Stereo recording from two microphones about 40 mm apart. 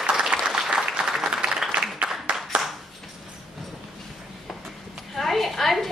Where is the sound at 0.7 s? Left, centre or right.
Centre.